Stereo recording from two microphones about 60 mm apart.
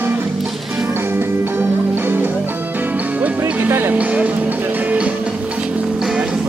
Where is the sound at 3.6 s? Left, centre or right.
Right.